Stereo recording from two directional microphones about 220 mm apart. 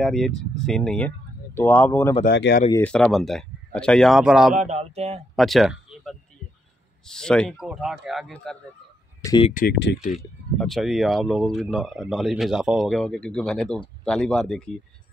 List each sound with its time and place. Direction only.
0.0 s speech: centre (ahead or behind)
2.2 s speech: 50° left (ahead or behind)
2.7 s speech: 5° left (ahead or behind)
4.6 s speech: 30° right (ahead or behind)
5.3 s speech: centre (ahead or behind)
9.2 s speech: 20° left (ahead or behind)
9.5 s speech: 35° left (ahead or behind)
10.1 s speech: centre (ahead or behind)